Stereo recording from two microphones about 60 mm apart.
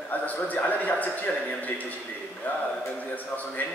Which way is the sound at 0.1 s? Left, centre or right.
Left.